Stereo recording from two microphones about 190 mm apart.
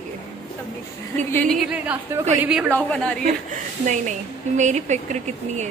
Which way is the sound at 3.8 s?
40° right (ahead or behind).